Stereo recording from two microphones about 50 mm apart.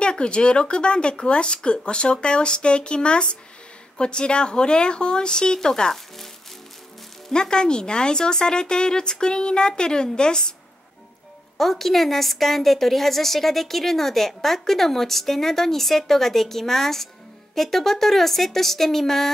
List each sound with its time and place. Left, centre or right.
0.0 s speech: centre
7.2 s speech: centre
11.5 s a woman's voice: centre